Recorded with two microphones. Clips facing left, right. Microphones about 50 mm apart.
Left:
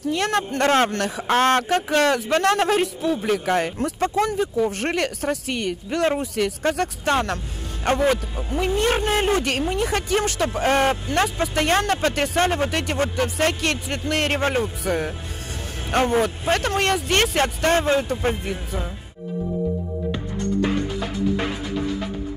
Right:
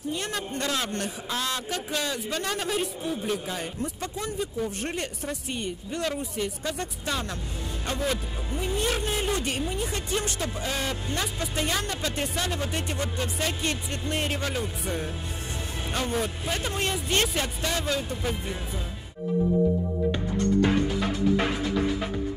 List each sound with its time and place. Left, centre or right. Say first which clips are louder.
0.0 s speech: left 9 dB; left
0.7 s speech: left 11 dB; left
4.3 s speech: left 8 dB; left
6.6 s speech: left 9 dB; left
7.8 s speech: left 10 dB; left
8.5 s speech: left 7 dB; left
10.4 s speech: left 11 dB; left
12.7 s speech: left 8 dB; left
14.9 s speech: left 8 dB; left
15.9 s a man's voice: left 10 dB; left
16.5 s speech: left 8 dB; left
18.4 s speech: left 5 dB; left